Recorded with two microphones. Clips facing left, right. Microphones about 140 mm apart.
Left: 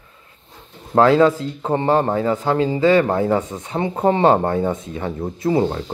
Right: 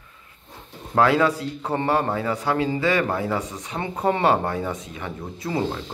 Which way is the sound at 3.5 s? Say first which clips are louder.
Left 6 dB; 25° left (ahead or behind).